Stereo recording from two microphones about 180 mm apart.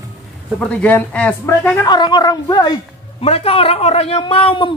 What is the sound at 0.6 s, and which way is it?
A man's voice, 5° left (ahead or behind).